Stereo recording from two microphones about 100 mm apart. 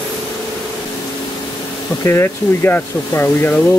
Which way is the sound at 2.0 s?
25° left (ahead or behind).